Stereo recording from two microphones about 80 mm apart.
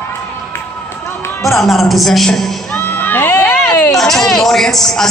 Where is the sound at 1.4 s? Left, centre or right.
Centre.